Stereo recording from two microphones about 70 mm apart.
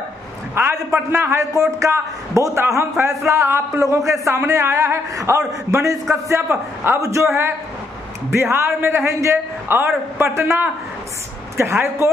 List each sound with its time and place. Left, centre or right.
0.6 s a man's voice: right
1.8 s a man's voice: right
6.2 s a man's voice: right
7.0 s a man's voice: right
8.3 s a man's voice: right
9.7 s a man's voice: right